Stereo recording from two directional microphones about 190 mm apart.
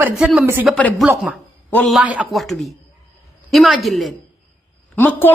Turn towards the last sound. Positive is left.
turn(degrees=10)  # may be behind; listen again after turning